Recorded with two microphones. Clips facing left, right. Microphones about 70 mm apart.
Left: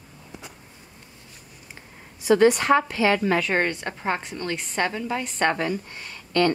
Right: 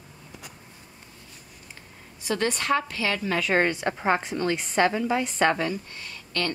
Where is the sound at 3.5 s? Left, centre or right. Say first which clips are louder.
Right 1 dB; centre.